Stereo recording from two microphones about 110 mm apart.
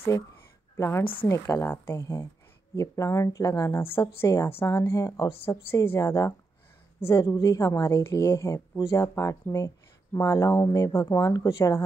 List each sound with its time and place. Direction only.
0.7 s speech: 25° left (ahead or behind)